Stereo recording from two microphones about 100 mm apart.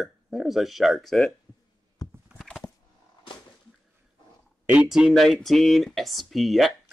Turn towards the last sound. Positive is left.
turn(degrees=0)  # may be behind; listen again after turning